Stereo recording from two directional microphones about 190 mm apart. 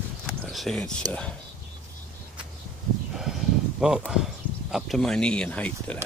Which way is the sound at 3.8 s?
5° right (ahead or behind).